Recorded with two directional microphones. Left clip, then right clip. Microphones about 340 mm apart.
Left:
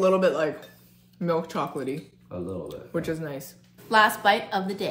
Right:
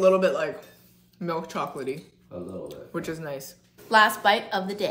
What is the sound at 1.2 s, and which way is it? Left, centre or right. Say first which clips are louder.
Speech: left 3 dB; centre.